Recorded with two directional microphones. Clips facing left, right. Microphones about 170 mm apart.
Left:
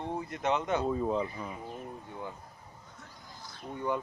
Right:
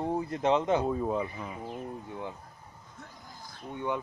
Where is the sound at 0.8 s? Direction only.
10° right (ahead or behind).